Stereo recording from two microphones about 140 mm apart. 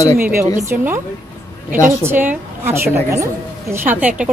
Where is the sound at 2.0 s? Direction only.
15° right (ahead or behind).